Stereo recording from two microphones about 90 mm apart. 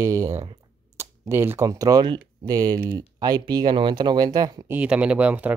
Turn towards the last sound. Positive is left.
turn(degrees=-15)  # may be behind; listen again after turning